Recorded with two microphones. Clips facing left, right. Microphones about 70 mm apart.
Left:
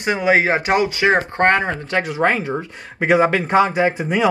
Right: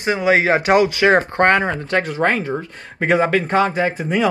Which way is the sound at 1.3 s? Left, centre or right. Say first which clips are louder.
Right 1 dB; left.